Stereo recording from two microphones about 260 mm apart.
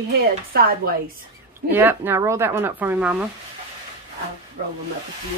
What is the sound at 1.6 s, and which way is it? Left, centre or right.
Speech, centre.